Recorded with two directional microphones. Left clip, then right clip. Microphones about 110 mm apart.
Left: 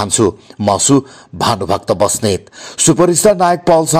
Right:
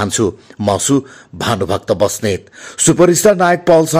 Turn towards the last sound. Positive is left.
turn(degrees=0)  # may be behind; listen again after turning